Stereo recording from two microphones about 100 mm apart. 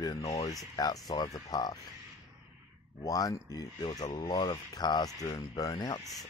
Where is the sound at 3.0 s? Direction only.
40° left (ahead or behind).